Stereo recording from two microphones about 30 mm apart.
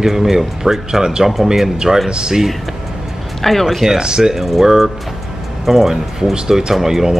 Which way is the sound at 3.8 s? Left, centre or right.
Right.